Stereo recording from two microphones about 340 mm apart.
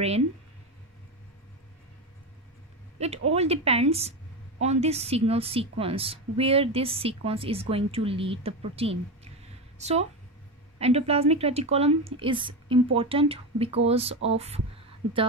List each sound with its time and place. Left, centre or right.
3.0 s a woman's voice: centre